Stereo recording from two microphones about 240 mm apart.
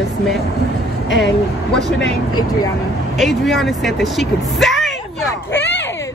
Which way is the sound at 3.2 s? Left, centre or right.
Centre.